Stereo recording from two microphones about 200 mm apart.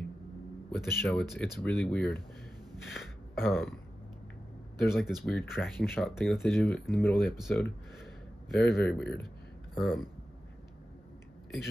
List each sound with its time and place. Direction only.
0.7 s speech: 5° left (ahead or behind)
2.9 s throat clearing: centre (ahead or behind)
4.8 s speech: centre (ahead or behind)
8.0 s a sound: centre (ahead or behind)
9.8 s speech: centre (ahead or behind)